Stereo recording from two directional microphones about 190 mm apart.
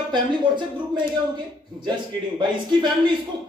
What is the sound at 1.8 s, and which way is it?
A man's voice, 25° right (ahead or behind).